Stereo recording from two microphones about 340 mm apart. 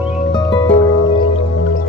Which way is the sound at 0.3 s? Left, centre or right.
Centre.